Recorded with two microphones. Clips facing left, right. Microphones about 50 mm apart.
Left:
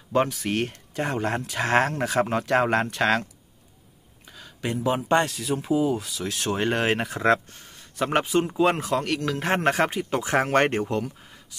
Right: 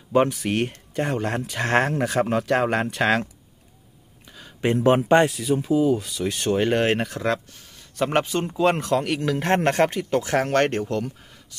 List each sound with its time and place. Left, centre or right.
0.1 s speech: centre
4.7 s speech: right
5.3 s speech: centre